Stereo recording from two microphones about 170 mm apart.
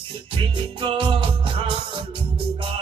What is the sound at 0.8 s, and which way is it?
Music, 30° right (ahead or behind).